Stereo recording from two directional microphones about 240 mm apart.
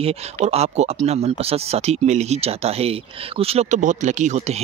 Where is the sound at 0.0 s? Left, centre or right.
Right.